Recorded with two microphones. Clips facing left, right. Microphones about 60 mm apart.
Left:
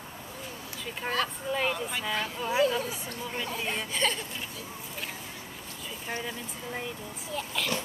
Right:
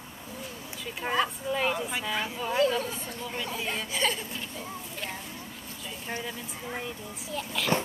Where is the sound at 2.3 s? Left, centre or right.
Centre.